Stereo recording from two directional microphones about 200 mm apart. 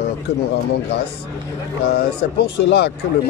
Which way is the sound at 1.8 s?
50° left (ahead or behind).